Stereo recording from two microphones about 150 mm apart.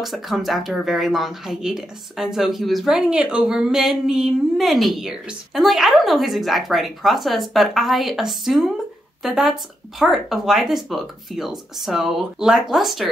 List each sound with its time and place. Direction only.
0.0 s speech: centre (ahead or behind)